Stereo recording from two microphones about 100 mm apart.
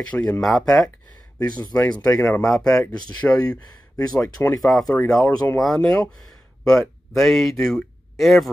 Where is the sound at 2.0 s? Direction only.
30° left (ahead or behind).